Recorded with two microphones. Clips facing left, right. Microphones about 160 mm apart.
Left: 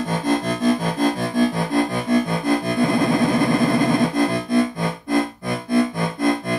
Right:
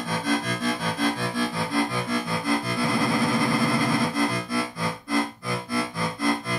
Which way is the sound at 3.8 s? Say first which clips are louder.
Left 6 dB; 50° left (ahead or behind).